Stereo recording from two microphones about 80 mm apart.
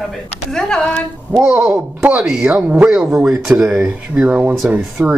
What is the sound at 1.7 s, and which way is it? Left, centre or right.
Speech, centre.